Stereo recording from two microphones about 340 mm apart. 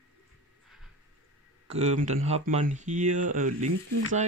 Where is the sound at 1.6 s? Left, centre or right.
Centre.